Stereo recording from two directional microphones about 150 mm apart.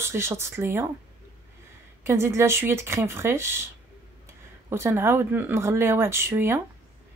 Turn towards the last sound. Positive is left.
turn(degrees=-15)  # may be behind; listen again after turning